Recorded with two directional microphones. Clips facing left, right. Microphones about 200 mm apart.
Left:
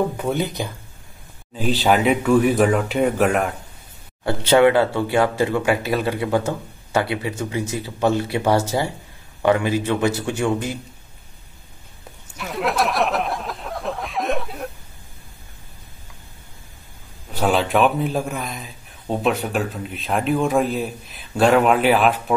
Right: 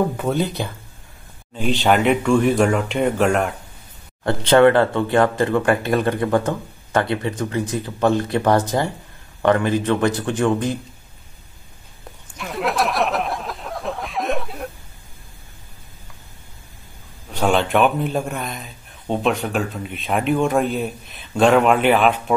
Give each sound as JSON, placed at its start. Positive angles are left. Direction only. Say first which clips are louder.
{"t": 0.3, "sound": "speech", "louder": "right 2 dB", "side_deg": 15}
{"t": 1.6, "sound": "a man's voice", "louder": "even", "side_deg": 0}
{"t": 12.4, "sound": "a sound", "louder": "even", "side_deg": 0}
{"t": 17.3, "sound": "a man's voice", "louder": "right 1 dB", "side_deg": 5}